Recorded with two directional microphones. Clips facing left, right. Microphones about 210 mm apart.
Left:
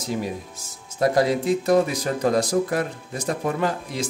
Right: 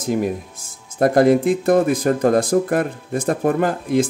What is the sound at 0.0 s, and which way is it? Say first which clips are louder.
Speech: right 7 dB; 50° right (ahead or behind).